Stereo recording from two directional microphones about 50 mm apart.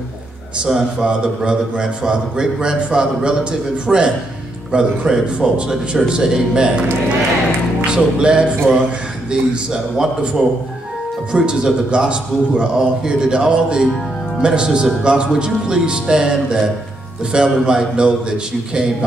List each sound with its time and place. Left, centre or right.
0.7 s a man's voice: centre
7.8 s music: centre
9.3 s a man's voice: centre